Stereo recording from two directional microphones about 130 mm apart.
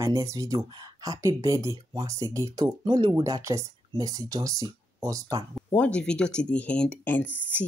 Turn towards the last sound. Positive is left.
turn(degrees=10)  # may be behind; listen again after turning